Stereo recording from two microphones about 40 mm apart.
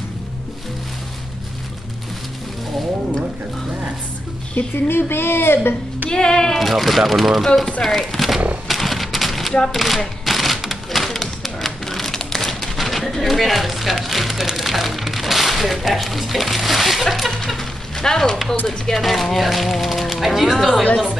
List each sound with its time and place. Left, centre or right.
4.8 s speech: left
6.0 s music: centre
6.6 s speech: centre
7.8 s a sound: centre
18.7 s speech: centre